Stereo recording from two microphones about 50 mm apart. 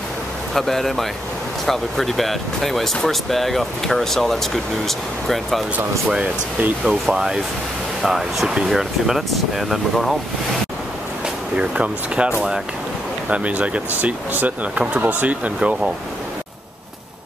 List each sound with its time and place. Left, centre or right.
0.6 s speech: centre
6.0 s speech: right
7.1 s speech: centre
11.2 s speech: centre
13.3 s speech: right